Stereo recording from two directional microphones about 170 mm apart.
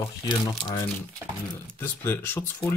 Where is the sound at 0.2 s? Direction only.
20° left (ahead or behind).